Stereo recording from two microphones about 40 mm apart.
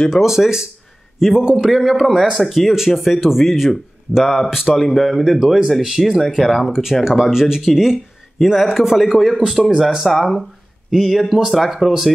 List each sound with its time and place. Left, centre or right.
0.2 s speech: centre
1.8 s speech: centre